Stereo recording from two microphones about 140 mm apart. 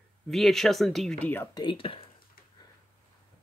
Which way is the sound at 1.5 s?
35° left (ahead or behind).